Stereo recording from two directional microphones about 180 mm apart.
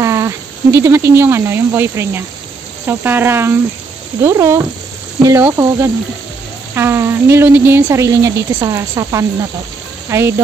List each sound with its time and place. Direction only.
0.0 s speech: 15° right (ahead or behind)